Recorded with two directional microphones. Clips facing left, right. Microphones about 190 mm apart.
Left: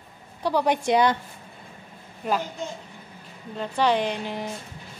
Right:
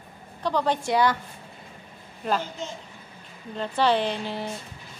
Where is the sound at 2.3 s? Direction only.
10° left (ahead or behind).